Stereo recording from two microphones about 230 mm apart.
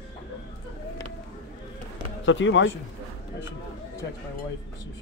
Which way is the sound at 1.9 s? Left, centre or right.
Left.